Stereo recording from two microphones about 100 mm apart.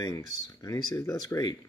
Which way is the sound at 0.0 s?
35° left (ahead or behind).